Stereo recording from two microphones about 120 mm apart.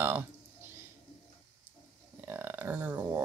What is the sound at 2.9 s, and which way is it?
Speech, 30° right (ahead or behind).